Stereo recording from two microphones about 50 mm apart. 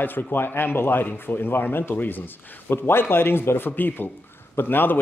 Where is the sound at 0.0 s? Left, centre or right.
Left.